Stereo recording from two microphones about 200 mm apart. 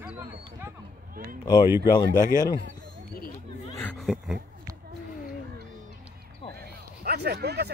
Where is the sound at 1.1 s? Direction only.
45° right (ahead or behind).